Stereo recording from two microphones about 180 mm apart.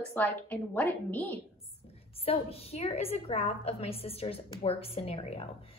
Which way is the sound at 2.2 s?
35° left (ahead or behind).